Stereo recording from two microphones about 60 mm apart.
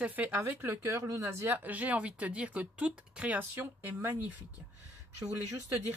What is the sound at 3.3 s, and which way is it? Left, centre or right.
Speech, right.